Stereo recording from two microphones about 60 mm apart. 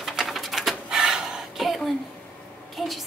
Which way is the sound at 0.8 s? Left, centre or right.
Centre.